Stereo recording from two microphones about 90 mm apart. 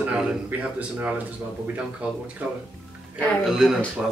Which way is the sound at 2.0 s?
15° right (ahead or behind).